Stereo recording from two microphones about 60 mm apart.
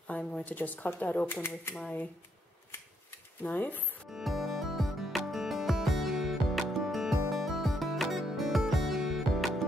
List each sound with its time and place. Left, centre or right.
0.0 s a sound: centre
0.5 s speech: left
1.8 s speech: left
3.1 s shuffling cards: left
4.1 s music: centre